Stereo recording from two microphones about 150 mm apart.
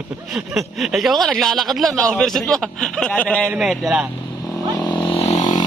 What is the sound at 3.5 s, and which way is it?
Speech, centre (ahead or behind).